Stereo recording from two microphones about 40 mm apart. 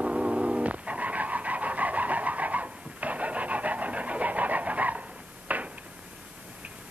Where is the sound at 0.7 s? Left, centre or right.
Right.